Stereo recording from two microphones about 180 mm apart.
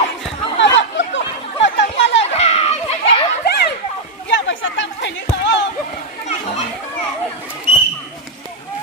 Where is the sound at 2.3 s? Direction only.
35° left (ahead or behind).